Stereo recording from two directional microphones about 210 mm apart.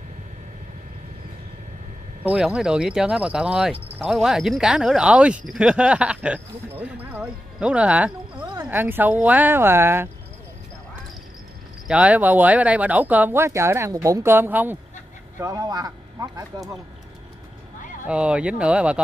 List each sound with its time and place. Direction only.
2.2 s speech: 5° right (ahead or behind)
11.9 s speech: 5° right (ahead or behind)
18.0 s speech: 5° right (ahead or behind)